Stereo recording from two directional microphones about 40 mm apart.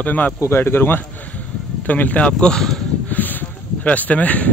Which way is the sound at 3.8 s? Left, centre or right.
Left.